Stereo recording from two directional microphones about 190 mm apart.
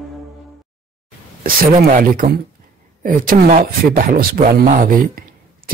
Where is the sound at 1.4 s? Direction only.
45° right (ahead or behind).